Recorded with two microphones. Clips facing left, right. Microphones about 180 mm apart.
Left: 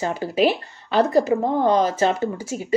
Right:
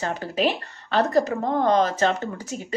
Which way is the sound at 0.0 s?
10° left (ahead or behind).